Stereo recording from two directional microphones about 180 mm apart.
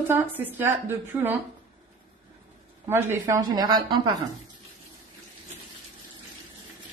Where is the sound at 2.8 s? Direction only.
15° right (ahead or behind).